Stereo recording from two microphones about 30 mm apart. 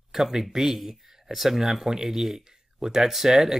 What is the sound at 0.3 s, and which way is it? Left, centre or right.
Speech, centre.